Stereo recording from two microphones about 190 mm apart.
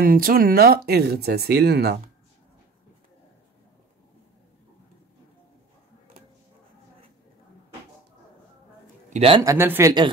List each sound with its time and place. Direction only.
0.0 s speech: 50° right (ahead or behind)
9.1 s a man's voice: 30° right (ahead or behind)
9.4 s speech: 15° right (ahead or behind)